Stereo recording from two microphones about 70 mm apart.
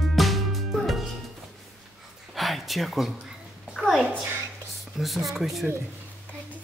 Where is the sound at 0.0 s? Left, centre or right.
Centre.